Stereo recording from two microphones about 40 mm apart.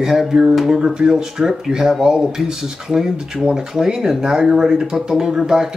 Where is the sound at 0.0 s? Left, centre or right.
Centre.